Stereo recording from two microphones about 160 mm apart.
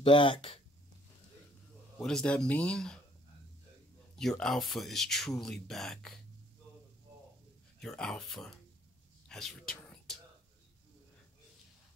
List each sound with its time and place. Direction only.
0.0 s speech: 30° left (ahead or behind)
2.0 s speech: 5° left (ahead or behind)
4.2 s speech: centre (ahead or behind)
7.8 s speech: 5° left (ahead or behind)
9.8 s a sound: 5° left (ahead or behind)